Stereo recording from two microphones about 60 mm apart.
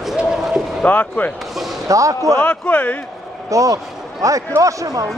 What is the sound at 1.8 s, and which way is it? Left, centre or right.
Speech, right.